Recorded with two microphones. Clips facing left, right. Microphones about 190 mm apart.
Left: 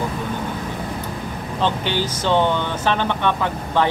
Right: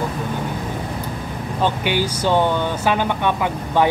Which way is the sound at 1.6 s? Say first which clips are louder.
Right 2 dB; 10° right (ahead or behind).